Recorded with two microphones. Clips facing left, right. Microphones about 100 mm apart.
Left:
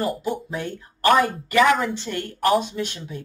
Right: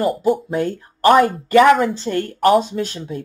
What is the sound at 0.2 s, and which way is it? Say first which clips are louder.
Speech: right 9 dB; 40° right (ahead or behind).